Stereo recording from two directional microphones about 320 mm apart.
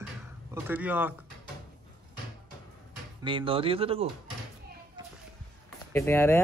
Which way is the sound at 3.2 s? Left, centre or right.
Centre.